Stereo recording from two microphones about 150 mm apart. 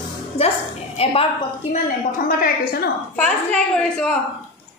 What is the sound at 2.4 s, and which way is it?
Speech, 85° left.